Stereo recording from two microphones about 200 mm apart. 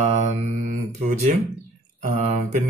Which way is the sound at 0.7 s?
35° right (ahead or behind).